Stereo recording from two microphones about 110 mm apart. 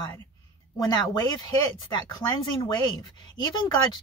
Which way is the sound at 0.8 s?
40° left (ahead or behind).